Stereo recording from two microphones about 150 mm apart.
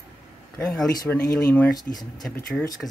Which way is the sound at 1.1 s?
15° left (ahead or behind).